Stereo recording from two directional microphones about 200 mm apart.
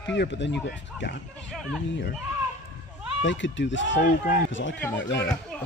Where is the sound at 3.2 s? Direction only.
65° left (ahead or behind).